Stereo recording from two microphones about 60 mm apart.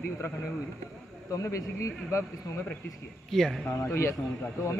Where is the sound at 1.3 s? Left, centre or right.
Left.